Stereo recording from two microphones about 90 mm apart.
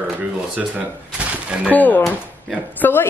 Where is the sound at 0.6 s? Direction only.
15° right (ahead or behind).